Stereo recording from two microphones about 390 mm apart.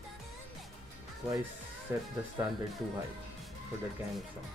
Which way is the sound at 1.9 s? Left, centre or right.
Centre.